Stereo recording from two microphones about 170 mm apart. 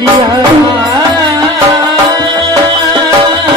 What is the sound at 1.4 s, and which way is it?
Music, 25° right (ahead or behind).